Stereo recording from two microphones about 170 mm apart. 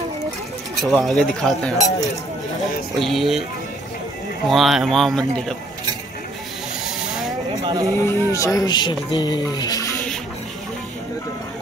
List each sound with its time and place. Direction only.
0.7 s speech: centre (ahead or behind)
3.0 s speech: centre (ahead or behind)
4.5 s speech: centre (ahead or behind)
7.6 s speech: 25° right (ahead or behind)
8.0 s speech: 20° left (ahead or behind)